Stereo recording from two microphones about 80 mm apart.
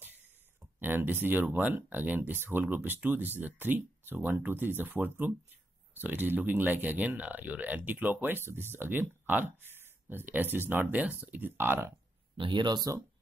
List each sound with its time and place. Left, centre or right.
0.7 s speech: right
12.4 s speech: right